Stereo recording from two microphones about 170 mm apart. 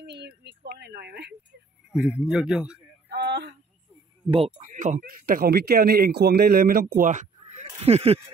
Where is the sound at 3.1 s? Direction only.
80° right.